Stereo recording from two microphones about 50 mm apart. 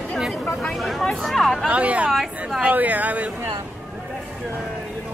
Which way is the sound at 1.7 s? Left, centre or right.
Right.